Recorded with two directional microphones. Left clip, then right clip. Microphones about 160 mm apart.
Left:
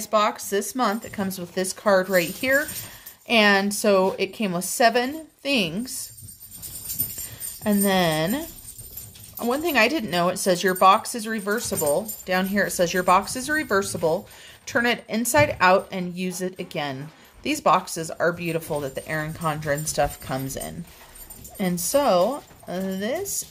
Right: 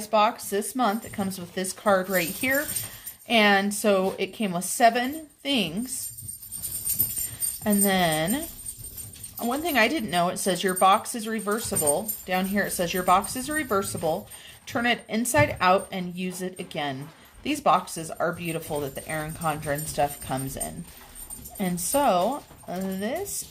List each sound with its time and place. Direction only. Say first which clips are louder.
0.1 s a woman's voice: left 1 dB; 25° left (ahead or behind)
7.6 s a woman's voice: left 2 dB; 30° left (ahead or behind)